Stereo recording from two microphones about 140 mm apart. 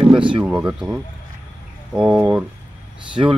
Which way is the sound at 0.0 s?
40° right (ahead or behind).